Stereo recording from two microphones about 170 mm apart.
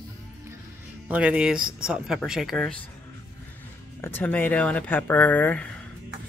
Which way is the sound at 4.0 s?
10° left (ahead or behind).